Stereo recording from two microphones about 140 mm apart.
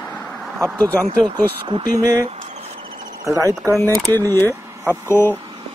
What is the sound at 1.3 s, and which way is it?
Speech, 30° right (ahead or behind).